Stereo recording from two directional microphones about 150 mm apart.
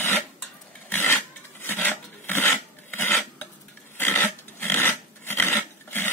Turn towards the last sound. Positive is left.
turn(degrees=15)  # may be behind; listen again after turning